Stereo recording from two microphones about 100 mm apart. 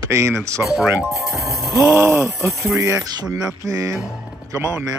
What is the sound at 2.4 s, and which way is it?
Music, centre (ahead or behind).